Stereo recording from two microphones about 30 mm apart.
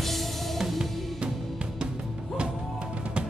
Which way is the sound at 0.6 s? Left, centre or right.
Centre.